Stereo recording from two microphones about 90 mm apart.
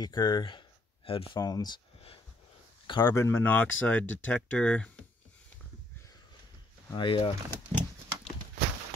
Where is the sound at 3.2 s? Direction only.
25° left (ahead or behind).